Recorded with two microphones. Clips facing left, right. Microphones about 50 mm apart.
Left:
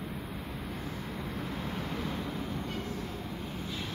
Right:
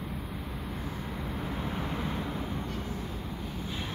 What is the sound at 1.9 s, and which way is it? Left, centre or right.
Waves, right.